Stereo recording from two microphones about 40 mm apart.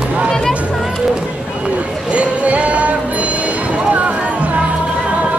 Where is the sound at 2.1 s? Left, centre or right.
Right.